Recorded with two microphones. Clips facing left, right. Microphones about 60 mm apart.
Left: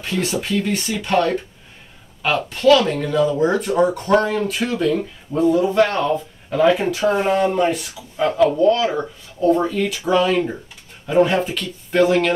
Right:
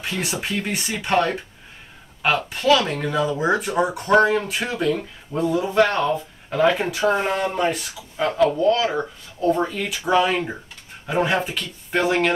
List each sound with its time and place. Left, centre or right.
0.2 s speech: centre